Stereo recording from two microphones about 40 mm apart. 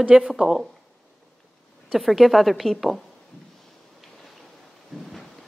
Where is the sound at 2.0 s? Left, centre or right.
Centre.